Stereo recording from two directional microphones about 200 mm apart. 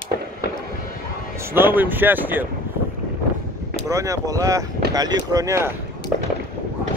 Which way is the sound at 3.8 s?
15° right (ahead or behind).